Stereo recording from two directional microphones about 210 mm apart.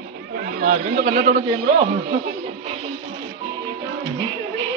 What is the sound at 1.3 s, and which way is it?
Speech, 30° right (ahead or behind).